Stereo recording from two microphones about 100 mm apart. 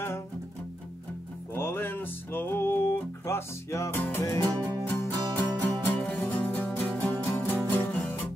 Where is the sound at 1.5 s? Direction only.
20° left (ahead or behind).